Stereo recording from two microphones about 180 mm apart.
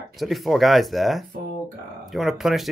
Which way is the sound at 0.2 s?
Centre (ahead or behind).